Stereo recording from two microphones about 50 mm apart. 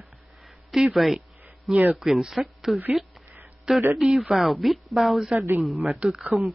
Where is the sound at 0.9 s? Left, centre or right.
Centre.